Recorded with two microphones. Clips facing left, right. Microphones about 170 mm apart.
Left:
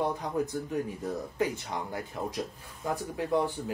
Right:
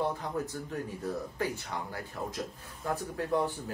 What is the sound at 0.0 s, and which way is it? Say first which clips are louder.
Speech: left 3 dB; 15° left (ahead or behind).